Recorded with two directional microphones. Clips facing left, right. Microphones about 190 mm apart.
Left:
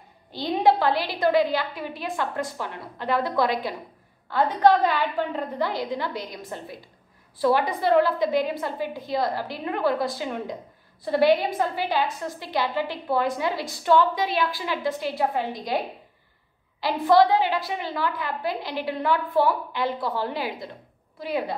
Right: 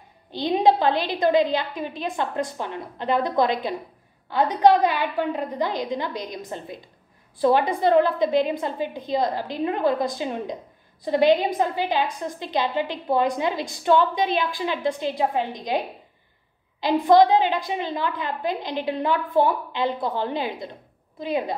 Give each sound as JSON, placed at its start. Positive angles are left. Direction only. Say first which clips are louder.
{"t": 0.3, "sound": "a woman's voice", "louder": "right 2 dB", "side_deg": -15}
{"t": 16.8, "sound": "a woman's voice", "louder": "right 2 dB", "side_deg": -20}